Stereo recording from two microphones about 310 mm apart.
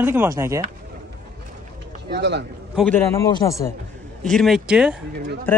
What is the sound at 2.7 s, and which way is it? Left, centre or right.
A man's voice, centre.